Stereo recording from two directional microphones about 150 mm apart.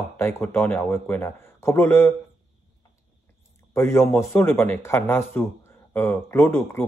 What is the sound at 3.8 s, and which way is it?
Speech, 15° left (ahead or behind).